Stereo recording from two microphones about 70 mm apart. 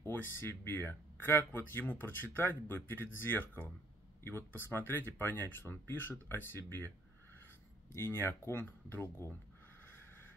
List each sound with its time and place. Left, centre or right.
0.0 s speech: left
7.9 s speech: left
9.8 s boat: left